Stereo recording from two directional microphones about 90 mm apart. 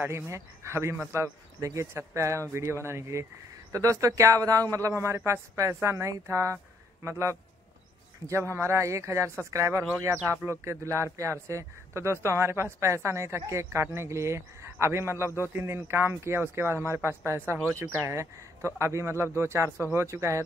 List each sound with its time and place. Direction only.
0.0 s speech: 30° right (ahead or behind)